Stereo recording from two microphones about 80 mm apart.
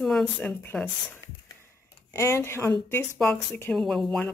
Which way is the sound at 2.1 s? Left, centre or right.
Left.